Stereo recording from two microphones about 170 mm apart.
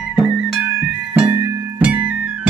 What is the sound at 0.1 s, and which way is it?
Music, 5° right (ahead or behind).